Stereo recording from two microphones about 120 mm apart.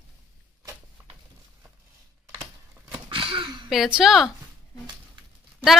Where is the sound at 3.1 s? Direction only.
45° right (ahead or behind).